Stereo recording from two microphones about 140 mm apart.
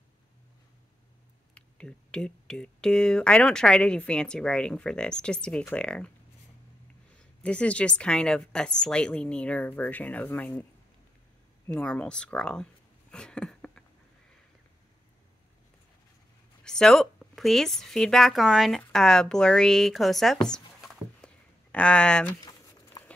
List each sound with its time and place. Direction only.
1.5 s speech: 5° left (ahead or behind)
7.4 s speech: 10° left (ahead or behind)
11.6 s speech: 10° left (ahead or behind)
13.1 s a sound: 5° left (ahead or behind)
16.6 s speech: 5° left (ahead or behind)
22.3 s crumpling: 30° left (ahead or behind)